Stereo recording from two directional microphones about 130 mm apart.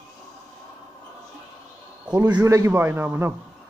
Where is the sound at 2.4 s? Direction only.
20° right (ahead or behind).